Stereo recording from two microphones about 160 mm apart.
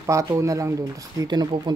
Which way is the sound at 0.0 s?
20° right (ahead or behind).